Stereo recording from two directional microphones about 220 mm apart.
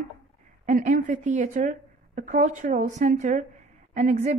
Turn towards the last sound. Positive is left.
turn(degrees=-30)  # may be behind; listen again after turning